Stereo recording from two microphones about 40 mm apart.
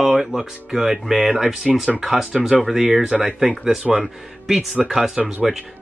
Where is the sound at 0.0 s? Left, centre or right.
Centre.